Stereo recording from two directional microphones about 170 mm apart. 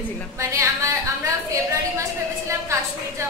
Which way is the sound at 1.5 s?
20° right (ahead or behind).